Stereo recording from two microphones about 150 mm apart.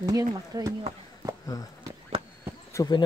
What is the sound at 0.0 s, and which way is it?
Speech, 25° right (ahead or behind).